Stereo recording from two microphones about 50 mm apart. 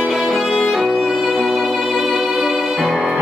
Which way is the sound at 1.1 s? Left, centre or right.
Centre.